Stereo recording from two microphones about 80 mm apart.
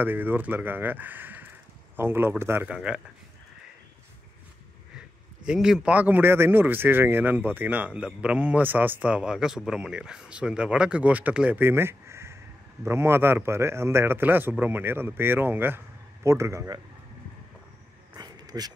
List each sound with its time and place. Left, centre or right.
0.0 s speech: right
2.6 s speech: centre
4.9 s a man's voice: centre; by 15.8 s right
16.3 s a man's voice: right
18.1 s a sound: right